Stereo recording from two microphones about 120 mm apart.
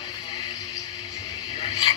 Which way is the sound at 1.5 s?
45° left (ahead or behind).